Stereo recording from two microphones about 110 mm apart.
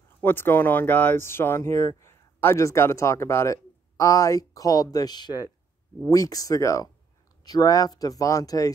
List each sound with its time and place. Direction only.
0.2 s speech: 20° left (ahead or behind)